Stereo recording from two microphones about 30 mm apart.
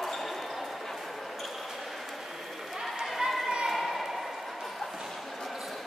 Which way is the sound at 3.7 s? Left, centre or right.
Centre.